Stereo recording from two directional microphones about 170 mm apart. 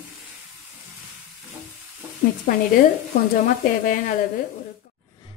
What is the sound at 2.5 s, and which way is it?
Speech, 55° left (ahead or behind).